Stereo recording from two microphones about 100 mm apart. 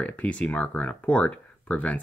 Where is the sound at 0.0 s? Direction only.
15° left (ahead or behind).